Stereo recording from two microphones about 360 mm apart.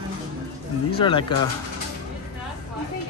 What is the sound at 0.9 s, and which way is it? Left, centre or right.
Speech, centre.